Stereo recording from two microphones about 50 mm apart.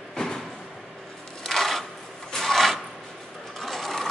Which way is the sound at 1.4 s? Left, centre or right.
Centre.